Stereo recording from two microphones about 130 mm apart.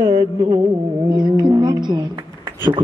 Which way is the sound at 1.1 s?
35° right (ahead or behind).